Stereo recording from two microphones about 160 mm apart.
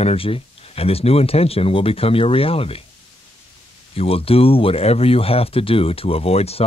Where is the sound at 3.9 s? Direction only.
35° left (ahead or behind).